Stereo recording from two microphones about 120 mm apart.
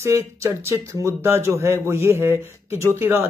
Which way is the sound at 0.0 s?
25° right (ahead or behind).